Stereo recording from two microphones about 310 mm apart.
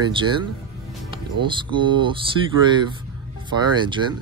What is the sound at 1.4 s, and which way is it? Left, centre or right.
Speech, centre.